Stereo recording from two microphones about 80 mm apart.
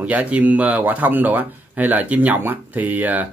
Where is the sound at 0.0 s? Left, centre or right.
Centre.